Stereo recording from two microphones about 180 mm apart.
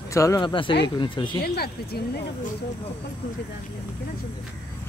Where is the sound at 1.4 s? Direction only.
60° left (ahead or behind).